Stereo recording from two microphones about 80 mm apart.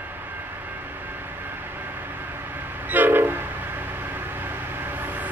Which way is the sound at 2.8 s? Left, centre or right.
Right.